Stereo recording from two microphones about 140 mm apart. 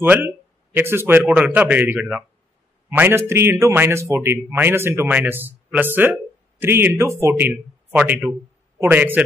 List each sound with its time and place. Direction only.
0.0 s a man's voice: 15° right (ahead or behind)